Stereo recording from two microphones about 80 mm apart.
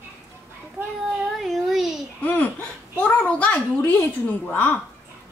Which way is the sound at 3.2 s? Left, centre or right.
Centre.